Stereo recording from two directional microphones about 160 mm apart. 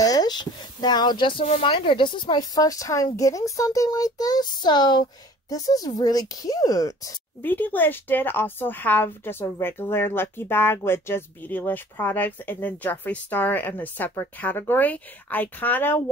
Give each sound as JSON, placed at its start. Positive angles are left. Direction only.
{"t": 0.0, "sound": "speech", "side_deg": 25}